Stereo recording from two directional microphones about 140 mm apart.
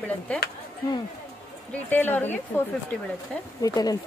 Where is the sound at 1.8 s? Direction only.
15° left (ahead or behind).